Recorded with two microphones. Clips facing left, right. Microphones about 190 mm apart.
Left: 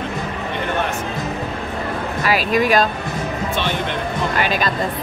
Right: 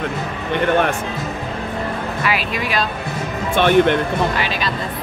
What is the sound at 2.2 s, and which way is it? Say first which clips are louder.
Speech: left 7 dB; 40° left (ahead or behind).